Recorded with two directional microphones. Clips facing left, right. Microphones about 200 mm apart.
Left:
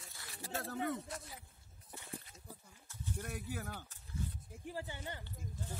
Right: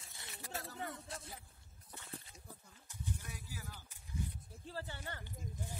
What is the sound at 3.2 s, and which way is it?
Speech, 60° left (ahead or behind).